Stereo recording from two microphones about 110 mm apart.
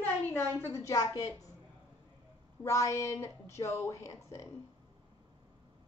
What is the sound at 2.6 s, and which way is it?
A woman's voice, 30° left (ahead or behind).